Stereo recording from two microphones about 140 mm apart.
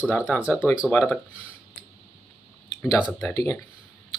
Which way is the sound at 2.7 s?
25° left (ahead or behind).